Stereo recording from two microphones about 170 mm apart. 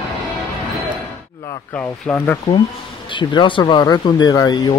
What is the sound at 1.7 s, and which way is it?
Speech, 10° left (ahead or behind).